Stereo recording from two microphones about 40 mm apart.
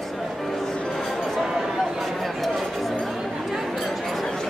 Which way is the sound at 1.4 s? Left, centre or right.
Centre.